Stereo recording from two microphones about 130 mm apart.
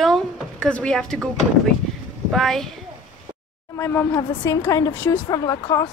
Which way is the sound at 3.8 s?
20° left (ahead or behind).